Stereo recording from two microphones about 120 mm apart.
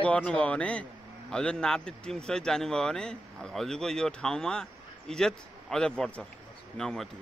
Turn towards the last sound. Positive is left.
turn(degrees=5)  # may be behind; listen again after turning